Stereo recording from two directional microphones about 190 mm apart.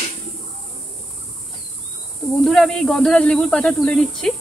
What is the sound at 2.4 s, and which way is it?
Speech, centre (ahead or behind).